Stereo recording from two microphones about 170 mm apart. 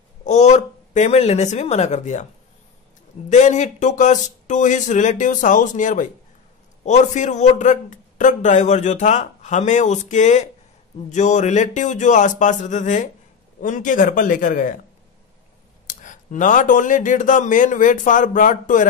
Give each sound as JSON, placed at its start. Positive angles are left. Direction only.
{"t": 0.2, "sound": "speech", "side_deg": 45}
{"t": 3.3, "sound": "a man's voice", "side_deg": 45}
{"t": 15.9, "sound": "a man's voice", "side_deg": 50}